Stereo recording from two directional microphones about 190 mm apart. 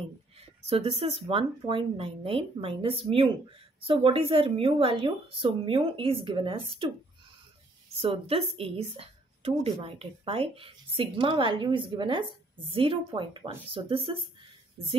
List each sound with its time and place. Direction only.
0.7 s speech: 30° right (ahead or behind)
8.0 s a woman's voice: 30° right (ahead or behind)